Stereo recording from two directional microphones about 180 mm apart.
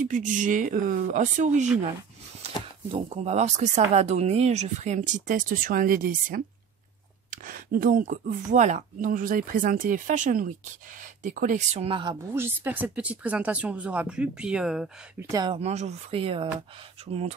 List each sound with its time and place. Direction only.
0.0 s speech: 45° right (ahead or behind)
2.9 s speech: 35° right (ahead or behind)
11.8 s speech: 25° right (ahead or behind)
12.4 s speech: 10° right (ahead or behind)
15.2 s speech: 20° right (ahead or behind)
15.5 s speech: 35° right (ahead or behind)